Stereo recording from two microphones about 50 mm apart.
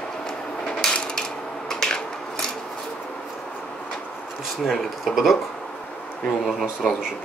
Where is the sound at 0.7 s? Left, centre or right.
Centre.